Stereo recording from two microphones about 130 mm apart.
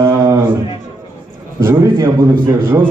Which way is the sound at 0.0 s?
25° right (ahead or behind).